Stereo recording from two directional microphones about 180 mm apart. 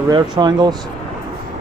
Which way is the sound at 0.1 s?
25° right (ahead or behind).